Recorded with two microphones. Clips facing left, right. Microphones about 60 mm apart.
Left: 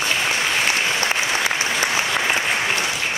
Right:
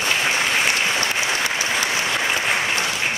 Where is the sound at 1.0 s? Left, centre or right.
Left.